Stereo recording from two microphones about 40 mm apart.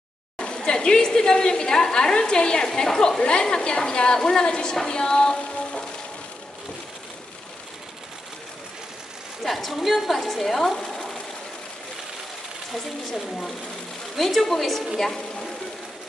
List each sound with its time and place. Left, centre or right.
0.4 s speech: left
9.4 s speech: centre
12.7 s speech: centre